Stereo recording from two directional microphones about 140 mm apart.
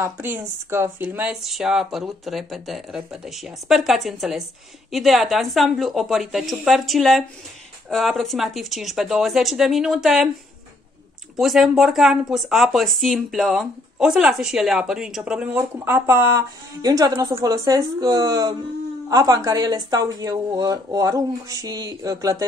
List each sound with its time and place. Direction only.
0.0 s speech: 15° right (ahead or behind)
1.3 s speech: 5° right (ahead or behind)
11.3 s speech: centre (ahead or behind); by 22.4 s 25° right (ahead or behind)